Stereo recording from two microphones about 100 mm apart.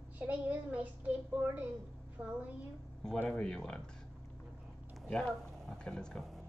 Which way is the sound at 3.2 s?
10° left (ahead or behind).